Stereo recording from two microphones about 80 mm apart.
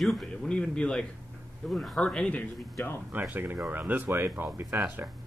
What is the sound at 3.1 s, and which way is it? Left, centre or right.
Speech, right.